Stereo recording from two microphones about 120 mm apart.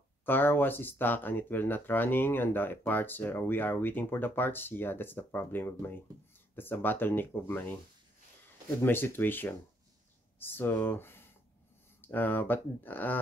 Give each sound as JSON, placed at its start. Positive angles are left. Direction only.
{"t": 0.2, "sound": "speech", "side_deg": 15}
{"t": 8.8, "sound": "speech", "side_deg": 20}